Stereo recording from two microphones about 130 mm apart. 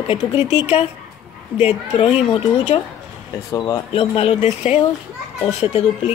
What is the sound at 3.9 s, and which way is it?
Speech, 45° left (ahead or behind).